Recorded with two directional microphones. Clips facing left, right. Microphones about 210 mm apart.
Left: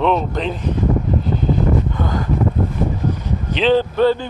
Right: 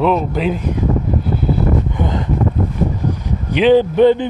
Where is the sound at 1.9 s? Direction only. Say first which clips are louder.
Right 2 dB; 20° right (ahead or behind).